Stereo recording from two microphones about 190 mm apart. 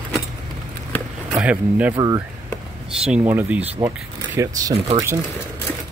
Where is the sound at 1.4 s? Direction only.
5° right (ahead or behind).